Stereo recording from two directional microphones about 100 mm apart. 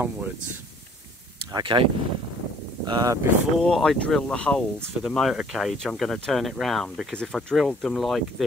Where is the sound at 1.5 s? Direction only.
50° right (ahead or behind).